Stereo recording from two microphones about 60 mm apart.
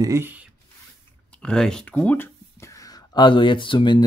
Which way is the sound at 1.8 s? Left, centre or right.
Left.